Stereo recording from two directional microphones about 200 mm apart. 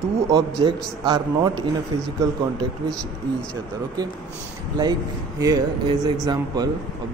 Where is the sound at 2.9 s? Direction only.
5° left (ahead or behind).